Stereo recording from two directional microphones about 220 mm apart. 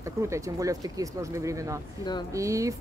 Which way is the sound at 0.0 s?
15° right (ahead or behind).